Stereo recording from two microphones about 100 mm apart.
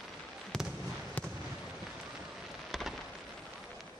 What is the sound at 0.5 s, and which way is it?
Fireworks, 5° left (ahead or behind).